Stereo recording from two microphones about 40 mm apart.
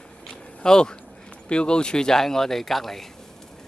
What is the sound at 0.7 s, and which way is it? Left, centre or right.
Speech, centre.